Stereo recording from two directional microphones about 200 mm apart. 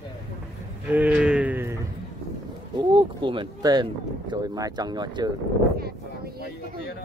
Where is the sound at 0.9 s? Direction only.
5° right (ahead or behind).